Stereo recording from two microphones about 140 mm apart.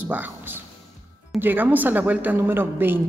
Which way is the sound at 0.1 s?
15° right (ahead or behind).